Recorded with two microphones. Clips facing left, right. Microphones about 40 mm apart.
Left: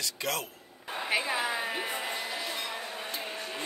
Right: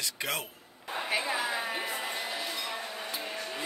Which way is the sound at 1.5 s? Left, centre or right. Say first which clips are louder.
Left 1 dB; centre.